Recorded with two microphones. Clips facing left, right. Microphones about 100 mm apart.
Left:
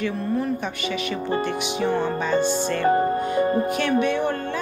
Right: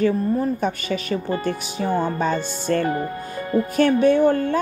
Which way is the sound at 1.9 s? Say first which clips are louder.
Right 4 dB; 45° right (ahead or behind).